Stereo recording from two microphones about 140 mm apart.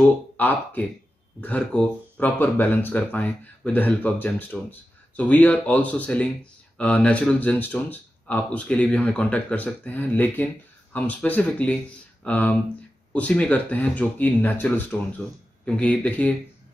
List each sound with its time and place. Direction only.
0.4 s speech: 10° left (ahead or behind)